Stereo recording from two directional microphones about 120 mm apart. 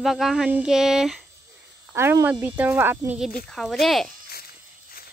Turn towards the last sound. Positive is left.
turn(degrees=0)  # may be behind; listen again after turning